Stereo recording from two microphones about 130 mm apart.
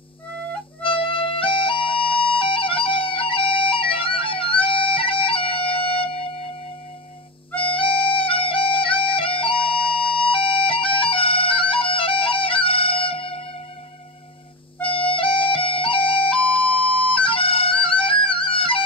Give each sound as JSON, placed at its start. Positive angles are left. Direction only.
{"t": 0.8, "sound": "music", "side_deg": 45}
{"t": 7.5, "sound": "music", "side_deg": 45}
{"t": 14.9, "sound": "music", "side_deg": 45}